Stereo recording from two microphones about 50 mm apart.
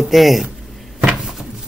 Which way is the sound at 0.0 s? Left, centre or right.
Centre.